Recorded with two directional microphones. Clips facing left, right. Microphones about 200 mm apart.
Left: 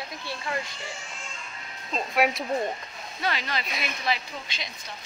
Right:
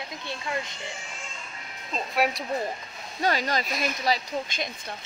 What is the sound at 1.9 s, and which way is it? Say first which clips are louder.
Speech: left 1 dB; centre (ahead or behind).